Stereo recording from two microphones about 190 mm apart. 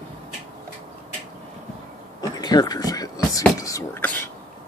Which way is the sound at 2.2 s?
20° left (ahead or behind).